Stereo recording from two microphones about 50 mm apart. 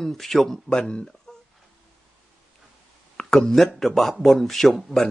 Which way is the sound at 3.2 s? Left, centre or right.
Centre.